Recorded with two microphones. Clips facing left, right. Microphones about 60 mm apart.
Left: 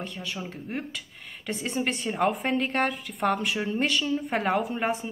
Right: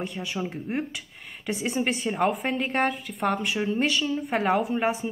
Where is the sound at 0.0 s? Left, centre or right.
Centre.